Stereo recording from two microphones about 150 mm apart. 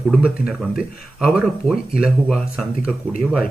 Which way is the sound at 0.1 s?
5° right (ahead or behind).